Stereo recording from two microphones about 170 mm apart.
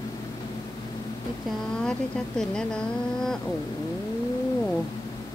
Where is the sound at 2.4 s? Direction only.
5° left (ahead or behind).